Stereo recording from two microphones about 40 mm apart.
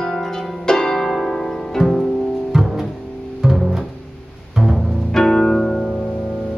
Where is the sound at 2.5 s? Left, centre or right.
Centre.